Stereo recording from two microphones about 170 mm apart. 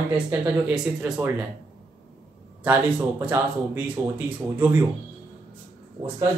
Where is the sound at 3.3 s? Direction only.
10° right (ahead or behind).